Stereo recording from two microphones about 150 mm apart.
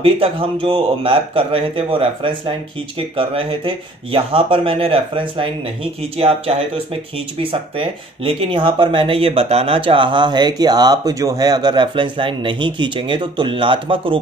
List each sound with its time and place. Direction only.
0.0 s speech: 35° right (ahead or behind)